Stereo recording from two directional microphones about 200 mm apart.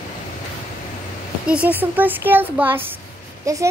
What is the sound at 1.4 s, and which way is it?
Speech, 5° right (ahead or behind).